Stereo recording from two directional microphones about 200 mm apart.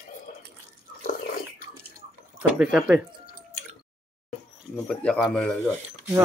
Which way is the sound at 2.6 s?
5° right (ahead or behind).